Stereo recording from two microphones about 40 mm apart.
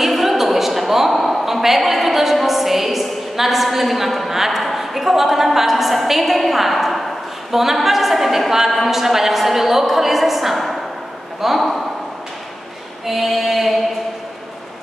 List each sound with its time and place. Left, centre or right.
0.0 s a sound: centre
7.5 s a woman's voice: centre
13.0 s a woman's voice: centre